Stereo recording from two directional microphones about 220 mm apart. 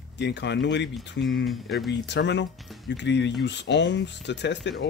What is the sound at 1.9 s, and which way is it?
Speech, 55° left (ahead or behind).